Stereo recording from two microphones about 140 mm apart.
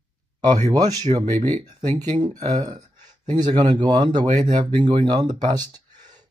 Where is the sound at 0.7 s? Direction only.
25° right (ahead or behind).